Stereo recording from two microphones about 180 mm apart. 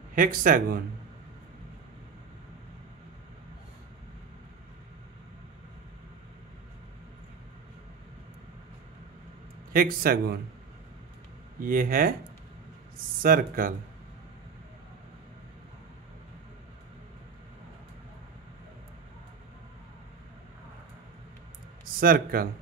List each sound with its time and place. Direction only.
0.1 s speech: 50° right (ahead or behind)
9.7 s speech: 55° right (ahead or behind)
11.6 s speech: 50° right (ahead or behind)
13.2 s speech: 50° right (ahead or behind)
22.0 s speech: 55° right (ahead or behind)